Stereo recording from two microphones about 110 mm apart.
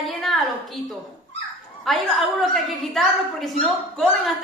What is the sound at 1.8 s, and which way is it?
A woman's voice, centre (ahead or behind).